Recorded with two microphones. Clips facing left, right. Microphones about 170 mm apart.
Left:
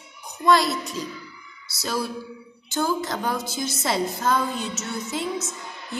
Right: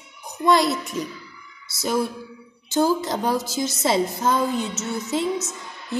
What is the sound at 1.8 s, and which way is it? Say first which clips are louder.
A woman's voice: right 4 dB; 20° right (ahead or behind).